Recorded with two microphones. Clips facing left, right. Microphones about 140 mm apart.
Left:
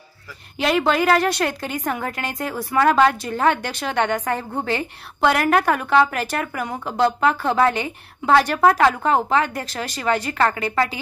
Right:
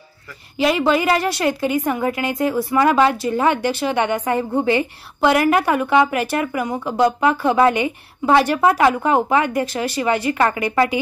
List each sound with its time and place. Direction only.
0.6 s speech: 5° right (ahead or behind)